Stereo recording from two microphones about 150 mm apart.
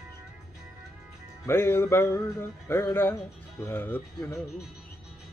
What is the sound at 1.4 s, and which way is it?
Music, 15° left (ahead or behind).